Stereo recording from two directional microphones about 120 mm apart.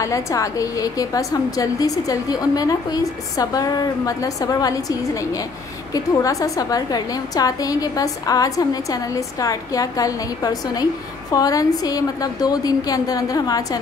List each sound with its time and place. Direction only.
0.0 s a woman's voice: 25° left (ahead or behind)
5.9 s a woman's voice: 30° left (ahead or behind)